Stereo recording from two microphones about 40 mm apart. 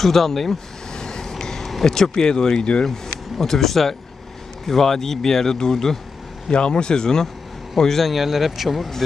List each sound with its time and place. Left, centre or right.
0.0 s speech: centre
0.9 s vehicle: centre
1.4 s a sound: centre
1.9 s speech: centre
3.3 s speech: centre
6.5 s speech: left; by 8.1 s centre
8.1 s speech: centre